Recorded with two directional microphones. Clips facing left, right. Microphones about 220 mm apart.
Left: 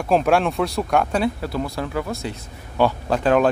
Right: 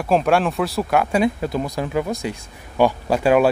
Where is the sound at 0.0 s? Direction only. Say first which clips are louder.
Even; centre (ahead or behind).